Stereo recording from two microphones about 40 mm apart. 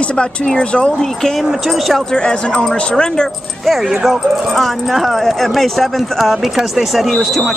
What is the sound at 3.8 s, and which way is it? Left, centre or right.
Speech, centre.